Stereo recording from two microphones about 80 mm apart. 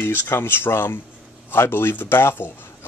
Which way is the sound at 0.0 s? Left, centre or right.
Left.